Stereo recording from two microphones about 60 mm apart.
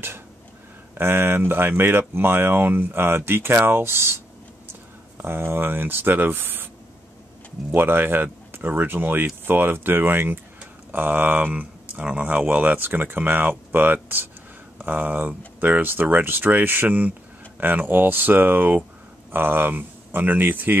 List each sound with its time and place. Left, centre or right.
0.9 s speech: right
7.7 s speech: right